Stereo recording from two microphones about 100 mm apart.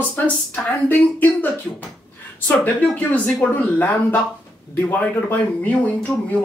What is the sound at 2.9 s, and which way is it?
Speech, 15° left (ahead or behind).